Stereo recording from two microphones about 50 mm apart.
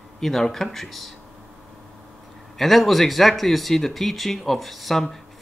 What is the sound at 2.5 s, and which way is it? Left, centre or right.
Speech, centre.